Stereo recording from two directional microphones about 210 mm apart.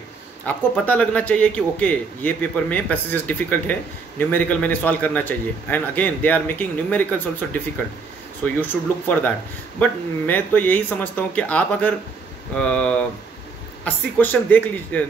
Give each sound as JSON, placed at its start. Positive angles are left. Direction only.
{"t": 0.5, "sound": "a man's voice", "side_deg": 5}
{"t": 8.5, "sound": "a man's voice", "side_deg": 10}